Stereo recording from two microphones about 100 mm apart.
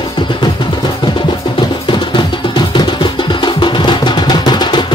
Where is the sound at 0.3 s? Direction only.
50° left (ahead or behind).